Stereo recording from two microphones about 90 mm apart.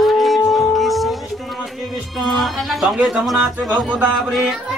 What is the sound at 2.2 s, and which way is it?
Speech, centre (ahead or behind).